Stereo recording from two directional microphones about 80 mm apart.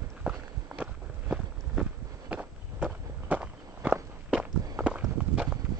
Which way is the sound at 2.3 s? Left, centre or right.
Centre.